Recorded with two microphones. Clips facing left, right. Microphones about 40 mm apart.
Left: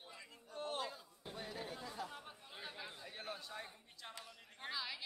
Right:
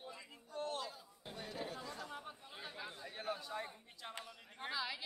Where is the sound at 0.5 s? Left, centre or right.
Left.